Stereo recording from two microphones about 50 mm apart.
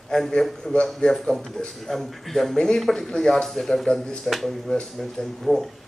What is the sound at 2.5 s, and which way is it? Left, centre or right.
Speech, centre.